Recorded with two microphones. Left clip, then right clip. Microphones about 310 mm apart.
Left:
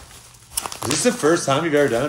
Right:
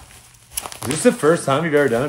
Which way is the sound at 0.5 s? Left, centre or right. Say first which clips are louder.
Left 2 dB; centre.